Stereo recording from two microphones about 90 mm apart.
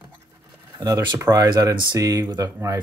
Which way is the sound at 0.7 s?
35° right (ahead or behind).